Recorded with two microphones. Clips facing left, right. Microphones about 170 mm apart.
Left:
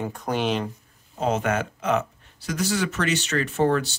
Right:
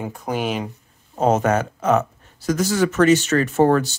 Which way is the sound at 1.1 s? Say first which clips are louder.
Right 6 dB; 45° right (ahead or behind).